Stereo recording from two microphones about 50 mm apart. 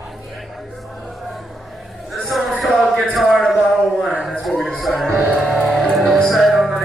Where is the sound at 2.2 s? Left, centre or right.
Centre.